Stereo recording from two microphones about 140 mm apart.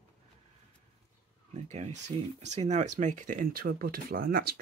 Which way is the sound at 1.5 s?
55° right (ahead or behind).